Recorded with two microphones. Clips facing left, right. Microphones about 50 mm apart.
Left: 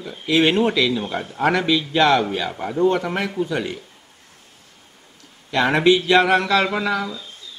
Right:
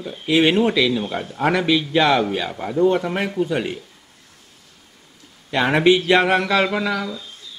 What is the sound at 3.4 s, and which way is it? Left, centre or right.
Speech, centre.